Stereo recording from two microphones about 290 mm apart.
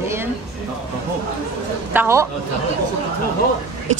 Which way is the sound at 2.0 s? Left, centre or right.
Centre.